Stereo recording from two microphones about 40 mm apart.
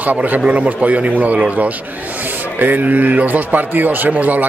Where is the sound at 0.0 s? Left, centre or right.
Right.